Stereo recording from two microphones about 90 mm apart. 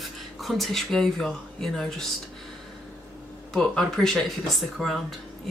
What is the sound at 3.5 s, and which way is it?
Speech, 5° left (ahead or behind).